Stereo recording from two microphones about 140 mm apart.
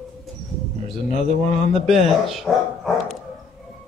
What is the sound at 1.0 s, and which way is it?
Speech, 55° left (ahead or behind).